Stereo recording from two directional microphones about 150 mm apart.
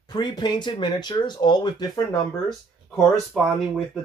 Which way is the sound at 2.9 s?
Centre (ahead or behind).